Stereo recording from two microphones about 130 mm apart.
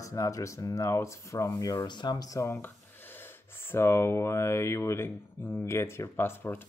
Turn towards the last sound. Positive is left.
turn(degrees=15)  # may be behind; listen again after turning